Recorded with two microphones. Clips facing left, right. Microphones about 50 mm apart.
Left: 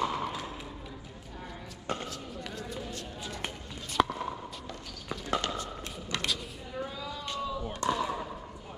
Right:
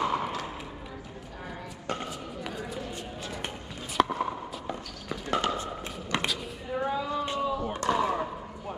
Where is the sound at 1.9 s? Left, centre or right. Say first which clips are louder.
Right 2 dB; centre.